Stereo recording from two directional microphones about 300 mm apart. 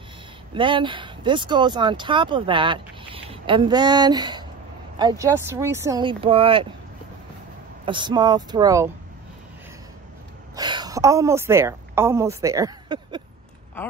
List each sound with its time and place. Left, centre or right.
0.6 s speech: centre
7.8 s speech: centre
10.5 s a woman's voice: centre